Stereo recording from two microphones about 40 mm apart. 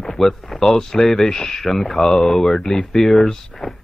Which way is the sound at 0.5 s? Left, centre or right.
Centre.